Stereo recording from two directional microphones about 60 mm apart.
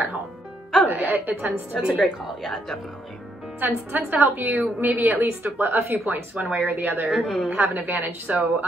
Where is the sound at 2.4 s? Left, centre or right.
Centre.